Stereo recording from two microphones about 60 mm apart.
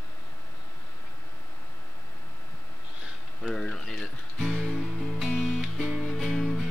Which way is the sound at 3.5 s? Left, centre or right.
Centre.